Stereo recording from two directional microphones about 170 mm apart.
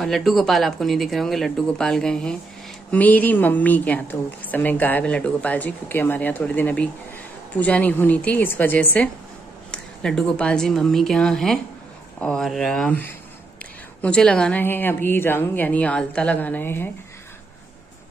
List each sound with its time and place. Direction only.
0.0 s a woman's voice: centre (ahead or behind)